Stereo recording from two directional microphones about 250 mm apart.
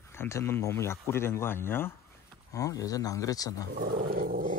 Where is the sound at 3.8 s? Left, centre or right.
Right.